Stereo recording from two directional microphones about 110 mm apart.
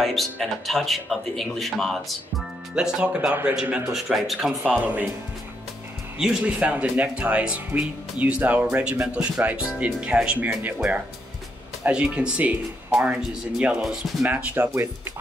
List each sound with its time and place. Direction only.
0.0 s speech: centre (ahead or behind)
4.6 s speech: 15° right (ahead or behind)
6.1 s speech: 10° right (ahead or behind)
14.3 s speech: 15° right (ahead or behind)